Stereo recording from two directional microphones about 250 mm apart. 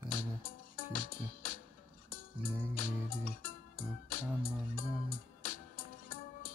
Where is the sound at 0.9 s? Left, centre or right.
Left.